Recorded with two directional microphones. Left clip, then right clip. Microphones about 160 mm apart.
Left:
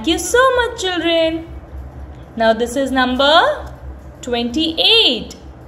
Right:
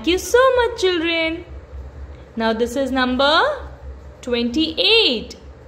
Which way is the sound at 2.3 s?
25° right (ahead or behind).